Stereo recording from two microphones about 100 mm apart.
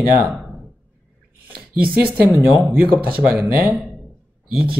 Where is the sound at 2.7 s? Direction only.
15° right (ahead or behind).